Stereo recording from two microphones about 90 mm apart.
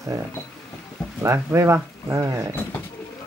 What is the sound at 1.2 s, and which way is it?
Speech, 30° right (ahead or behind).